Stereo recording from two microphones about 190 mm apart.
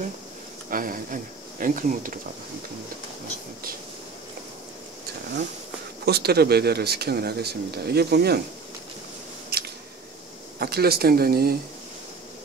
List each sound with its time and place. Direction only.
0.7 s speech: 45° right (ahead or behind)
6.0 s speech: 55° right (ahead or behind)
9.5 s a sound: 60° right (ahead or behind)
10.6 s speech: 55° right (ahead or behind)